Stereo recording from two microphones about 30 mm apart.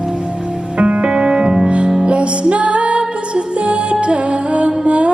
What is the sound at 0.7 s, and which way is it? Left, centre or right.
Music, right.